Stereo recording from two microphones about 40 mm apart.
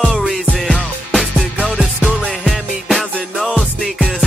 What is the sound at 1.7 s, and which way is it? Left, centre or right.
Music, right.